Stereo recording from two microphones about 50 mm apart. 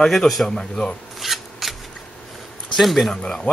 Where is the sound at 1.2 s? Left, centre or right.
Centre.